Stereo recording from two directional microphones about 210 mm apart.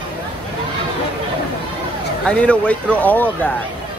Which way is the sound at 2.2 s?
5° left (ahead or behind).